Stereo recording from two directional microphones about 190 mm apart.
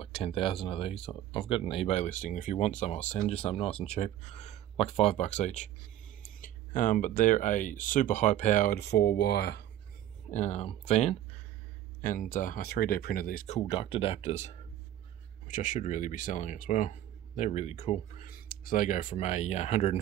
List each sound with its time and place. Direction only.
0.0 s speech: 30° left (ahead or behind); by 9.7 s 60° left (ahead or behind)
10.3 s speech: 35° left (ahead or behind)
13.6 s speech: 30° left (ahead or behind)
18.2 s speech: 50° left (ahead or behind)